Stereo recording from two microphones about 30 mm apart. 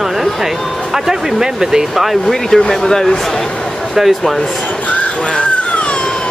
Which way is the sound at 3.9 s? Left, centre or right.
Centre.